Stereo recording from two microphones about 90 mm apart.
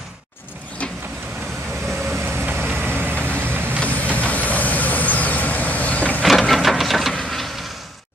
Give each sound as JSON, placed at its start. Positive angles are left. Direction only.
{"t": 2.2, "sound": "vehicle", "side_deg": -25}
{"t": 3.8, "sound": "vehicle", "side_deg": 15}
{"t": 6.2, "sound": "a sound", "side_deg": 0}